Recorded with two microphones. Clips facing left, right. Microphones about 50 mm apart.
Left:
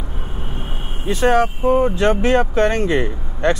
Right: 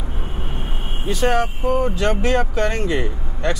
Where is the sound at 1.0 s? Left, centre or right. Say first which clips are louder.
Left 4 dB; left.